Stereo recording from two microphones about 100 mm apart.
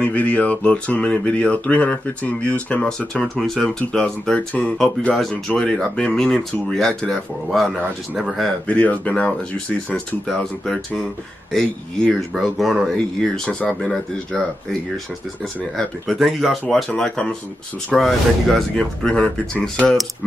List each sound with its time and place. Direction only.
0.0 s speech: 15° left (ahead or behind)
8.6 s speech: 15° left (ahead or behind)
15.8 s speech: centre (ahead or behind)